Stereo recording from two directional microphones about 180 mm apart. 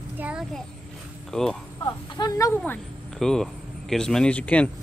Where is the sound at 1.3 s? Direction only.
Centre (ahead or behind).